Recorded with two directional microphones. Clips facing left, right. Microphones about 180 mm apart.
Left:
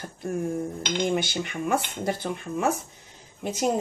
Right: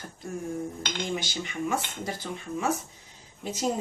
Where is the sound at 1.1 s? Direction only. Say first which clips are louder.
Left 5 dB; 60° left (ahead or behind).